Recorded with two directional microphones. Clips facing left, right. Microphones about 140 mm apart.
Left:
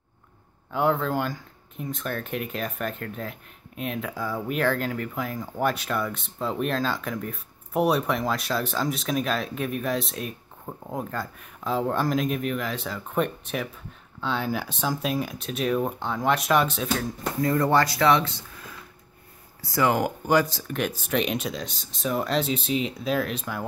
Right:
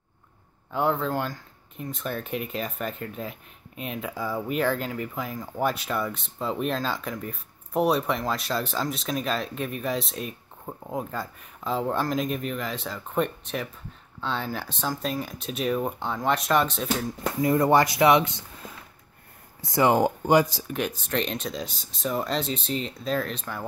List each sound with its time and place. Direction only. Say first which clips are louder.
0.7 s speech: left 1 dB; centre (ahead or behind)
17.4 s speech: right 2 dB; 15° right (ahead or behind)
20.7 s speech: left 2 dB; 5° left (ahead or behind)